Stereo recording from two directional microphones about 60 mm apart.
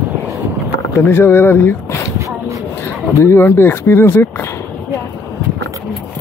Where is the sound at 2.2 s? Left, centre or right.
Right.